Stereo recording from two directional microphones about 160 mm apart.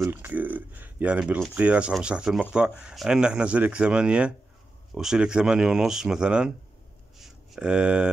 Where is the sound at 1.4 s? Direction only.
5° right (ahead or behind).